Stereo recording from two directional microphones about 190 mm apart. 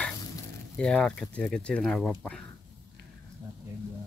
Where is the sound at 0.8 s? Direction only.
5° left (ahead or behind).